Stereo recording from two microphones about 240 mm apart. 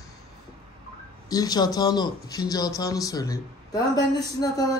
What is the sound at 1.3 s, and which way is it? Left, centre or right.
Speech, centre.